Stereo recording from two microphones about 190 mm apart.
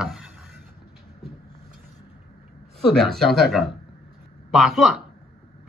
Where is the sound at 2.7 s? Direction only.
Centre (ahead or behind).